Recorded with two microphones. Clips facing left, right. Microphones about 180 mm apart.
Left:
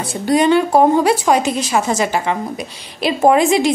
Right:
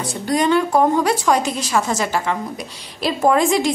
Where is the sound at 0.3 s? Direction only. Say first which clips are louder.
Left 4 dB; 25° left (ahead or behind).